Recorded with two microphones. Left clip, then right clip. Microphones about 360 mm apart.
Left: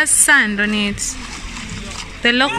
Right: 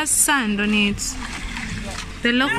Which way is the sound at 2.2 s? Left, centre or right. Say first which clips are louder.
Left 5 dB; centre.